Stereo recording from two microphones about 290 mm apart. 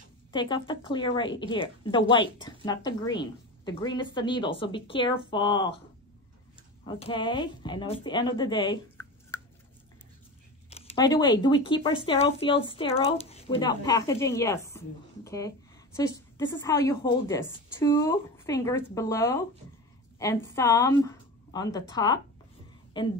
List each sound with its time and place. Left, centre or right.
0.3 s a woman's voice: centre
6.9 s a woman's voice: centre
10.7 s a woman's voice: centre